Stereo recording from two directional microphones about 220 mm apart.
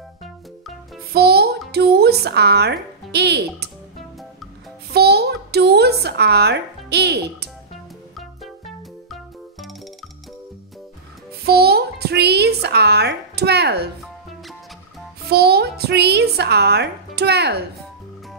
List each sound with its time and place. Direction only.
1.1 s music: 45° right (ahead or behind)
1.7 s speech: 45° right (ahead or behind)
4.9 s a child's voice: 45° right (ahead or behind)
7.7 s music: centre (ahead or behind)
11.4 s a sound: 45° right (ahead or behind)
15.2 s a woman's voice: 45° right (ahead or behind)